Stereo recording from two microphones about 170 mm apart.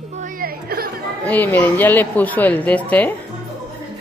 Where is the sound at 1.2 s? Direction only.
10° left (ahead or behind).